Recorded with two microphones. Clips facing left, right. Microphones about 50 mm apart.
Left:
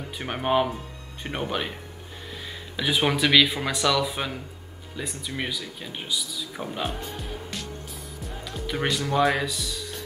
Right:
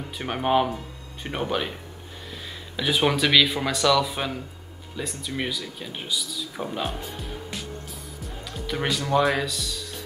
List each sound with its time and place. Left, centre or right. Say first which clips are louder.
0.2 s speech: right 1 dB; centre
2.7 s speech: right 1 dB; centre